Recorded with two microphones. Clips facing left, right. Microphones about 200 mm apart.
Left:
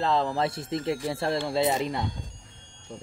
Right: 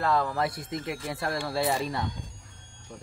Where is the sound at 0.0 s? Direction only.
25° left (ahead or behind).